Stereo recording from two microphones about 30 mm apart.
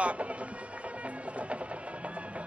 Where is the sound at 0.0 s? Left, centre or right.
Right.